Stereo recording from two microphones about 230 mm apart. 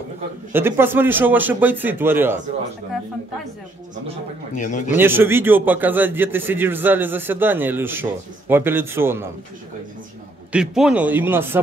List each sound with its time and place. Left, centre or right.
0.5 s a man's voice: centre
4.6 s speech: left
4.9 s a man's voice: centre
10.5 s a man's voice: centre